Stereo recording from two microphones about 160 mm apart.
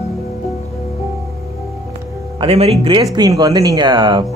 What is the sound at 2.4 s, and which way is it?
Speech, 40° right (ahead or behind).